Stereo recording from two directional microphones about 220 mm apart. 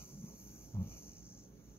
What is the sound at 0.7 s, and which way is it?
Cricket, 10° left (ahead or behind).